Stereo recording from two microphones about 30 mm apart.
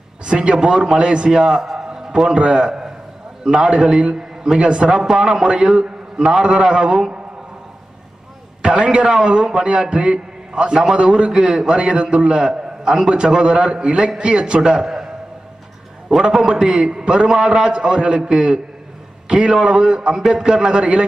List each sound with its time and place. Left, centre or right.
0.2 s a man's voice: right
1.3 s a man's voice: centre
1.8 s a sound: centre
2.3 s a man's voice: right
8.6 s a man's voice: right
9.2 s a man's voice: right
9.6 s a man's voice: right
12.4 s a man's voice: right
14.6 s a man's voice: right
16.3 s a man's voice: centre
17.0 s a man's voice: right